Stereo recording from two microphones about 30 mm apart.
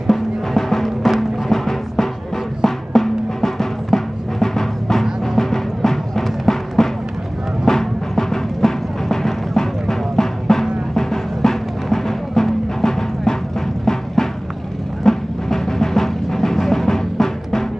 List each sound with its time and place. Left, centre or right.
0.0 s music: centre